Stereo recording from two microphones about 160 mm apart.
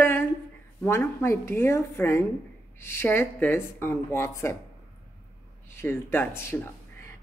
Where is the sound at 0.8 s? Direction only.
15° left (ahead or behind).